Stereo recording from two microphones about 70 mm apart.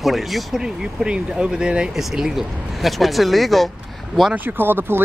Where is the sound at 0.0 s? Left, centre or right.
Centre.